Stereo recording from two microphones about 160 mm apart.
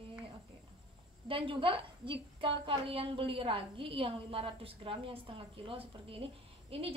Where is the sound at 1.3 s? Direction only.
35° right (ahead or behind).